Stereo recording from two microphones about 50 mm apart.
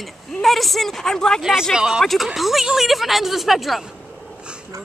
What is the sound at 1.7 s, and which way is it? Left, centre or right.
Speech, centre.